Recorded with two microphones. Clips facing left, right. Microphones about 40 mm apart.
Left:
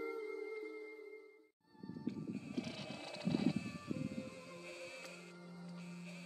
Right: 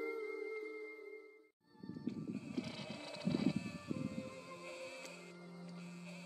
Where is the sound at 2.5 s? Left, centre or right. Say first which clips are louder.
Even; centre.